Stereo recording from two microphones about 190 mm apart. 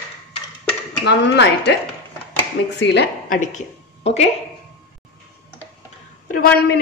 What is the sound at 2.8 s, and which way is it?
Speech, 65° left (ahead or behind).